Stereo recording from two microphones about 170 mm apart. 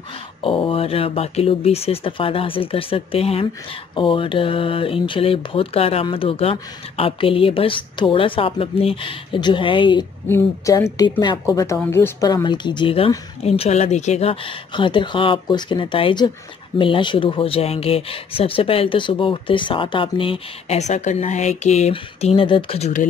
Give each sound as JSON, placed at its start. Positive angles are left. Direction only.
{"t": 0.4, "sound": "speech", "side_deg": 30}
{"t": 10.2, "sound": "a woman's voice", "side_deg": 15}